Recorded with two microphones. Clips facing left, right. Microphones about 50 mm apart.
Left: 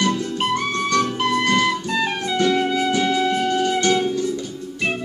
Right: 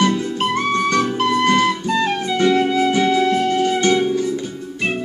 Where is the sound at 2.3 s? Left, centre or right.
Centre.